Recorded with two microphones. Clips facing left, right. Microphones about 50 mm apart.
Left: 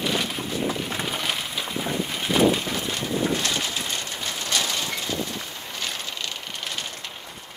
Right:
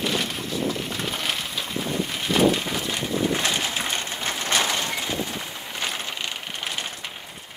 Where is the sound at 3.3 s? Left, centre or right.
Right.